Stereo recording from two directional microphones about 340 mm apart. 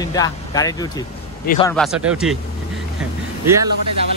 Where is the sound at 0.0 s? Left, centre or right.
Centre.